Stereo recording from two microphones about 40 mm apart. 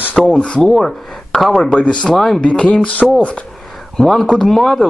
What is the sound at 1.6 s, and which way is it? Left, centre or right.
Speech, left.